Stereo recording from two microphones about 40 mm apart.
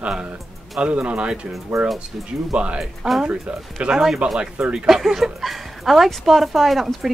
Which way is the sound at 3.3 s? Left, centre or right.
Right.